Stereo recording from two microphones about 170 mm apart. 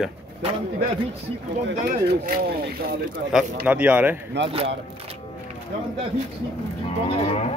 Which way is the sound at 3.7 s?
10° right (ahead or behind).